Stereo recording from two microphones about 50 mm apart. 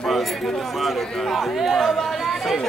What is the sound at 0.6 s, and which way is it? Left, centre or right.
Speech, centre.